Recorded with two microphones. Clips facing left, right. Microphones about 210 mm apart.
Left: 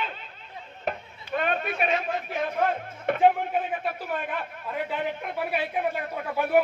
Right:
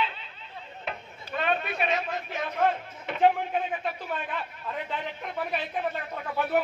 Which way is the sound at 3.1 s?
55° left (ahead or behind).